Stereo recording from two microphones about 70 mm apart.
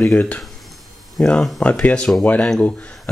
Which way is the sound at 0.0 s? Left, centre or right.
Left.